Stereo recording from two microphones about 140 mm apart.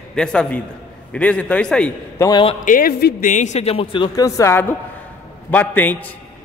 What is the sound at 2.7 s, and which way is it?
Speech, 85° left.